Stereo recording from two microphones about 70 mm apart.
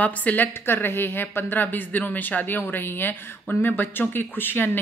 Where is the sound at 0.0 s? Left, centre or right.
Left.